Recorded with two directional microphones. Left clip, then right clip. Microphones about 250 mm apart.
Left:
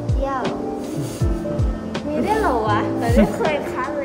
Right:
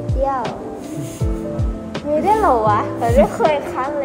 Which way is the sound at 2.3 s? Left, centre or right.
Centre.